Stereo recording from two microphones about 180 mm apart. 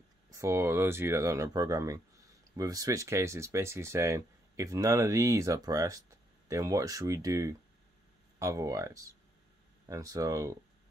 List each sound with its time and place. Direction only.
0.3 s speech: 15° right (ahead or behind)